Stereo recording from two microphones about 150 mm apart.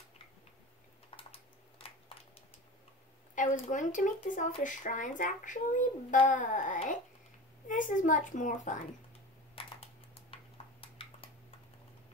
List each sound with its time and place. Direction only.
1.1 s typing: 40° left (ahead or behind)
3.3 s a child's voice: 55° left (ahead or behind)
9.6 s a sound: 40° left (ahead or behind)